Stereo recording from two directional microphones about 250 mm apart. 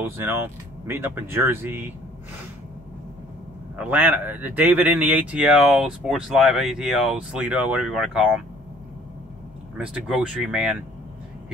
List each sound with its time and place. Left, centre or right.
0.8 s speech: centre
3.7 s speech: centre
9.8 s speech: centre